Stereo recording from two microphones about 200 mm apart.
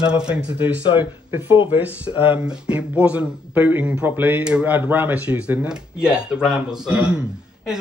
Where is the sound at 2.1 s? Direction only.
25° left (ahead or behind).